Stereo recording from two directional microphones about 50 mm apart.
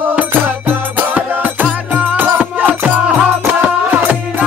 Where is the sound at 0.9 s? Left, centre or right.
Right.